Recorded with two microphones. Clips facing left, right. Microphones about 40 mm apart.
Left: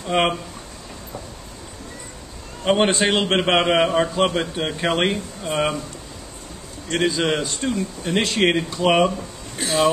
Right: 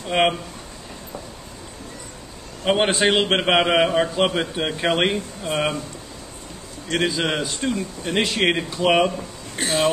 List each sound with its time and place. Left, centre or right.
0.0 s speech: centre
2.6 s a man's voice: centre
6.9 s a man's voice: centre
9.6 s speech: right